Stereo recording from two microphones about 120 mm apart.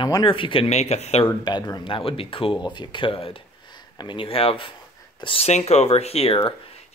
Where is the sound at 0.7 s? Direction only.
65° left (ahead or behind).